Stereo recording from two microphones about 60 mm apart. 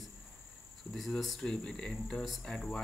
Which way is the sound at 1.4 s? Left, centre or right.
Centre.